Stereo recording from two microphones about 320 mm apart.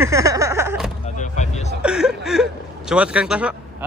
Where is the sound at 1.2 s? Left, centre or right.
Left.